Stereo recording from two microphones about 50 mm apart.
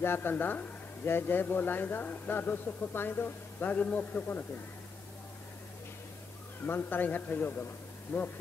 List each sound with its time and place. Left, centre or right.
0.0 s a man's voice: left
6.6 s a man's voice: left